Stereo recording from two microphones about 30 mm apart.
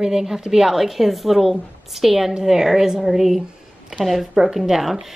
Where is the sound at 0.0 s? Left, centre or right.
Centre.